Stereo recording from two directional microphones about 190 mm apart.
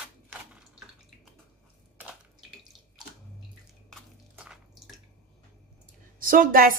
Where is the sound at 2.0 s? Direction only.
5° right (ahead or behind).